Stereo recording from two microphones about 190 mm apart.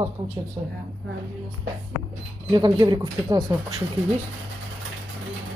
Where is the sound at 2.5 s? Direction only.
25° right (ahead or behind).